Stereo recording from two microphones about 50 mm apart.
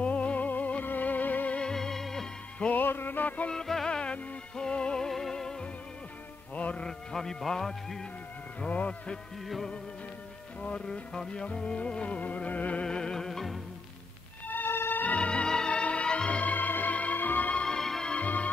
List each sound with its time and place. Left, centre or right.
0.0 s music: left
1.6 s music: centre
2.7 s music: left
3.4 s music: centre
6.5 s music: left
6.9 s a man's voice: centre
8.5 s music: left
10.6 s music: left
12.8 s music: centre
14.5 s music: left
15.0 s music: left
16.5 s music: left
17.6 s music: centre
18.1 s music: left